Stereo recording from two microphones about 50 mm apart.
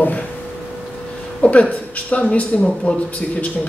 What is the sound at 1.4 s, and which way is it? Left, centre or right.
Speech, left.